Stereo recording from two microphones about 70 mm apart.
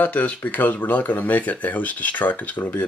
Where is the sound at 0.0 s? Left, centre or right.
Left.